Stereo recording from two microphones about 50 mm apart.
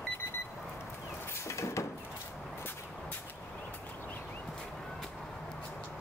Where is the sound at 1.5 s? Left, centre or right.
Left.